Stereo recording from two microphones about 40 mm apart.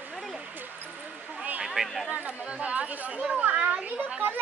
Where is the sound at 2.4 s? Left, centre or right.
Right.